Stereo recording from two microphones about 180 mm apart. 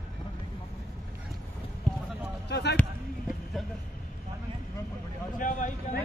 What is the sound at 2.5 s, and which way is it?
Speech, 65° left (ahead or behind).